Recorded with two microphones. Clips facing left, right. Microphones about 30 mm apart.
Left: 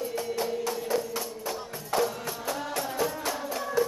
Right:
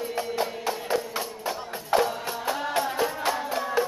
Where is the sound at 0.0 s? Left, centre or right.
Right.